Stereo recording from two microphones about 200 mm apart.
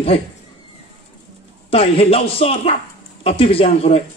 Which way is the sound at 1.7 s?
30° left (ahead or behind).